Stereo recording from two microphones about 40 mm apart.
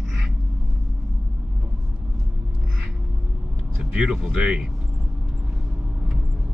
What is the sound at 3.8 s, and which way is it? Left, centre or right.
Vehicle, right.